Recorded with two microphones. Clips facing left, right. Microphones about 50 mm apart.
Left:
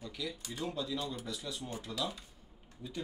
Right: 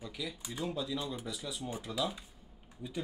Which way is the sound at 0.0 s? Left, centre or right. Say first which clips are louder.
Even; centre.